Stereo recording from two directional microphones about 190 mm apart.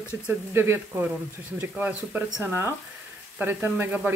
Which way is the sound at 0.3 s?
10° right (ahead or behind).